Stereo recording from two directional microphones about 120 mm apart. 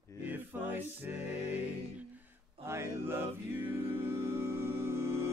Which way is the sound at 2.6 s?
20° right (ahead or behind).